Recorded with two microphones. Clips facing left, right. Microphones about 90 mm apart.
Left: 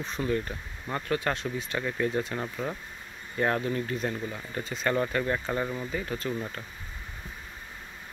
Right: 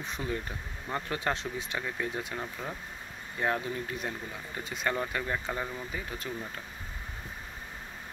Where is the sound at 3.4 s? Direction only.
10° right (ahead or behind).